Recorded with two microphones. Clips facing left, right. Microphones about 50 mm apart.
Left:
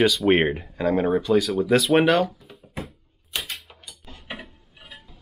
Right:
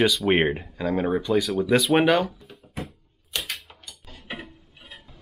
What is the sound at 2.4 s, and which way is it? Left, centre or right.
Drawer open or close, centre.